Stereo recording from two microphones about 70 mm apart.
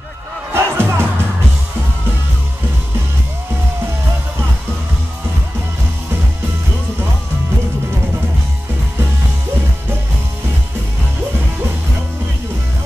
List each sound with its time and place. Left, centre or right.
0.5 s music: right